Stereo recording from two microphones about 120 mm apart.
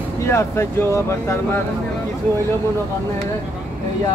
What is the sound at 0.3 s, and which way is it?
Speech, 20° left (ahead or behind).